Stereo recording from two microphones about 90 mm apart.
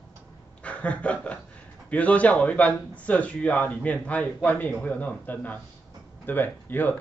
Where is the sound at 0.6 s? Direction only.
15° left (ahead or behind).